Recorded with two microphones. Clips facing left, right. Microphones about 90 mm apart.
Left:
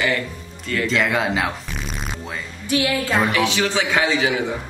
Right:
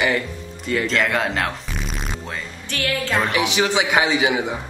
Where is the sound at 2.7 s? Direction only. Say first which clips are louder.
Left 3 dB; 10° left (ahead or behind).